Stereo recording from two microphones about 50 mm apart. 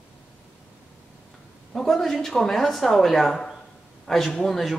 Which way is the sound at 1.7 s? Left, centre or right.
Centre.